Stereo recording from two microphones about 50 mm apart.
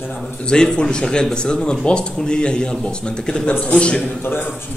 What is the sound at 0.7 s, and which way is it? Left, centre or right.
A man's voice, centre.